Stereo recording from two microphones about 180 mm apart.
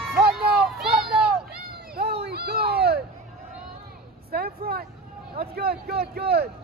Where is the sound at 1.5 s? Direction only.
65° right (ahead or behind).